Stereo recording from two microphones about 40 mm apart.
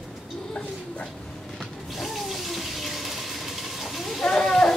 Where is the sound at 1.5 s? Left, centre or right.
Centre.